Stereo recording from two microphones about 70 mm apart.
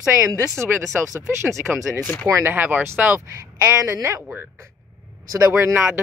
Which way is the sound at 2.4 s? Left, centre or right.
Right.